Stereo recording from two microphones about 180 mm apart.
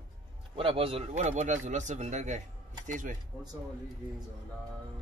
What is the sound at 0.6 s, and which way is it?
Speech, 30° right (ahead or behind).